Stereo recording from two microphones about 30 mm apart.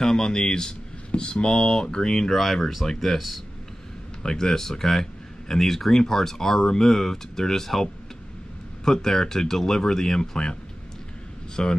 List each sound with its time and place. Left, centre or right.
0.0 s speech: left
2.3 s speech: centre
4.2 s speech: left
8.8 s speech: centre
11.6 s speech: left